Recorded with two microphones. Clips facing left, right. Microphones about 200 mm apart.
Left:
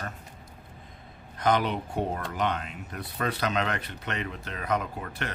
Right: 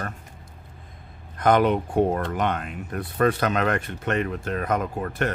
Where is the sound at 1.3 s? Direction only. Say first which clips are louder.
Right 6 dB; 50° right (ahead or behind).